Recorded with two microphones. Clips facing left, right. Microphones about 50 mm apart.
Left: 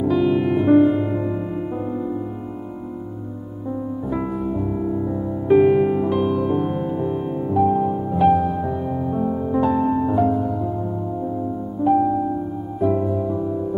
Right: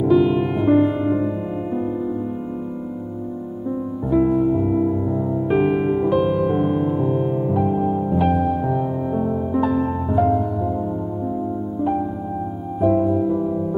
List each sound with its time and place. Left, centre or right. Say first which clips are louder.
0.0 s music: right 2 dB; centre
4.1 s music: right 9 dB; centre
11.9 s music: left 9 dB; centre